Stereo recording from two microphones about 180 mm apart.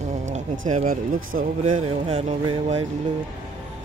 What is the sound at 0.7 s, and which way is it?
Speech, 45° right (ahead or behind).